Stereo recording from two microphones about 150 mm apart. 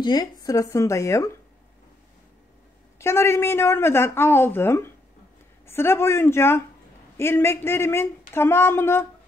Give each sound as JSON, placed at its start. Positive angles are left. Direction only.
{"t": 0.0, "sound": "speech", "side_deg": 30}
{"t": 3.0, "sound": "speech", "side_deg": 15}